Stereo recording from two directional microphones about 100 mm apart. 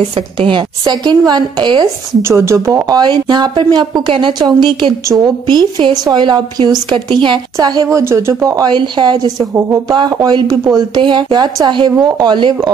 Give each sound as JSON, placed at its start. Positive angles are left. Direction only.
{"t": 0.4, "sound": "a woman's voice", "side_deg": -55}
{"t": 2.2, "sound": "a woman's voice", "side_deg": -30}
{"t": 7.9, "sound": "speech", "side_deg": -25}
{"t": 8.7, "sound": "a woman's voice", "side_deg": -50}
{"t": 9.4, "sound": "speech", "side_deg": -30}
{"t": 11.0, "sound": "a woman's voice", "side_deg": -50}